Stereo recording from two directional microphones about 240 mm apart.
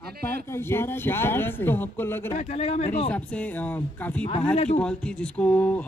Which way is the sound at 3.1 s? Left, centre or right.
Centre.